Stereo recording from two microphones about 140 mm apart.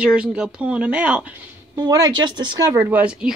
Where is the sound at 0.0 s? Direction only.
10° right (ahead or behind).